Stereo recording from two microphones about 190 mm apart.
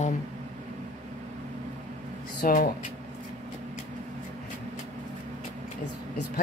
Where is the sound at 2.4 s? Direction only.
50° left (ahead or behind).